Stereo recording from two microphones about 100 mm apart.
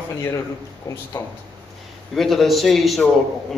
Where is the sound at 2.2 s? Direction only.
Centre (ahead or behind).